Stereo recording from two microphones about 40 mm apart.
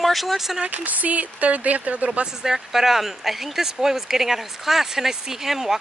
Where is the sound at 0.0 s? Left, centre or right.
Centre.